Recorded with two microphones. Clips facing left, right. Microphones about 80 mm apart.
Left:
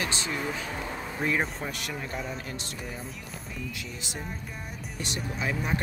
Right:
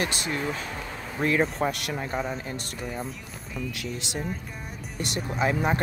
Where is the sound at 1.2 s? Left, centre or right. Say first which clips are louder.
Right 6 dB; right.